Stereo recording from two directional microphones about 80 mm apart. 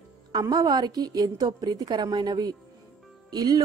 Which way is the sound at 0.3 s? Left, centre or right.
Right.